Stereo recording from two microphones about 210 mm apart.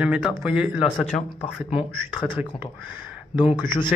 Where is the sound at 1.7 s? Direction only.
25° left (ahead or behind).